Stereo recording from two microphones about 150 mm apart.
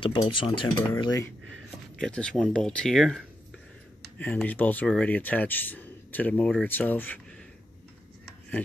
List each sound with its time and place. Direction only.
0.0 s speech: 35° left (ahead or behind)
1.0 s speech: 20° left (ahead or behind)
2.0 s speech: 5° left (ahead or behind)